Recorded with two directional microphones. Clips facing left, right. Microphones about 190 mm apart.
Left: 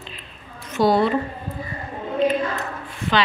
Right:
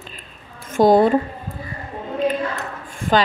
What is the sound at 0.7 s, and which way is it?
Speech, 45° right (ahead or behind).